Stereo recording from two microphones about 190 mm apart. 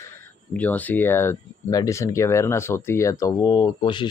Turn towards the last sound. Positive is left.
turn(degrees=25)  # may be behind; listen again after turning